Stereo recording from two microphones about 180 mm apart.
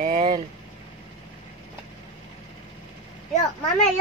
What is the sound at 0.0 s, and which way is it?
Vehicle, 35° right (ahead or behind).